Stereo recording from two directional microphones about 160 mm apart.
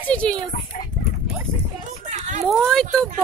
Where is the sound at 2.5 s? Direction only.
5° left (ahead or behind).